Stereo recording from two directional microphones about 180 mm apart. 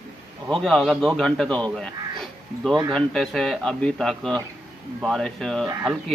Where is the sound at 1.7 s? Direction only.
5° left (ahead or behind).